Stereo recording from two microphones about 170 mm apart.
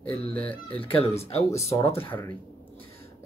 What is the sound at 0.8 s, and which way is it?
Speech, 35° left (ahead or behind).